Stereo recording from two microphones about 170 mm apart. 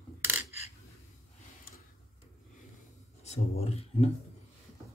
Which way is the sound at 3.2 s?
40° left (ahead or behind).